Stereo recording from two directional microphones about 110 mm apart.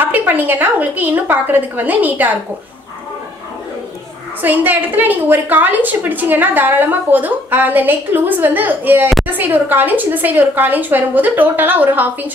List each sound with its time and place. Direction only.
0.0 s a woman's voice: 15° right (ahead or behind)
4.4 s a woman's voice: 15° right (ahead or behind)